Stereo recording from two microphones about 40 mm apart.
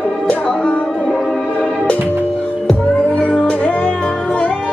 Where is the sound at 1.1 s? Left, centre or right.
Centre.